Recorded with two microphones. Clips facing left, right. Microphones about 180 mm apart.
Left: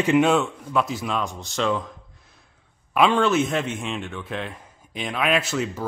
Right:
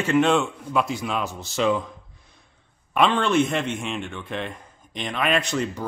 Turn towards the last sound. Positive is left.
turn(degrees=5)  # may be behind; listen again after turning